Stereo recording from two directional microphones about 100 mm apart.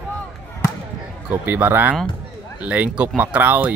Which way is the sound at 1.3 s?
15° right (ahead or behind).